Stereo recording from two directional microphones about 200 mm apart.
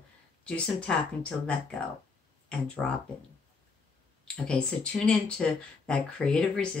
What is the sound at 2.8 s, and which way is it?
Speech, 5° left (ahead or behind).